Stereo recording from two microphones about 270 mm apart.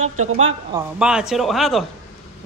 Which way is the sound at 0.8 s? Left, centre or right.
Centre.